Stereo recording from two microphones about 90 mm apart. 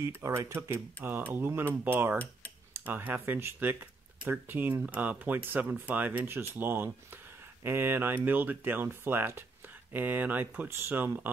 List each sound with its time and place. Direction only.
0.0 s speech: 35° right (ahead or behind)